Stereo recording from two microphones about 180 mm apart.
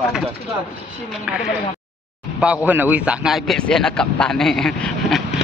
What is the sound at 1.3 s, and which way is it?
Speech, centre (ahead or behind).